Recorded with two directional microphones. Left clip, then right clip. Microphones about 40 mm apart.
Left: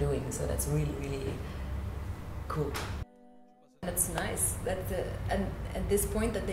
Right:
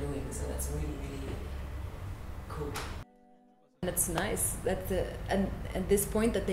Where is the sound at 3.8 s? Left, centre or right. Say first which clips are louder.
Right 2 dB; centre.